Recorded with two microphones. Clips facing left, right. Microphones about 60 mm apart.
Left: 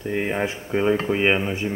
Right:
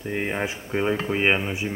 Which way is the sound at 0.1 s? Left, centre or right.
Centre.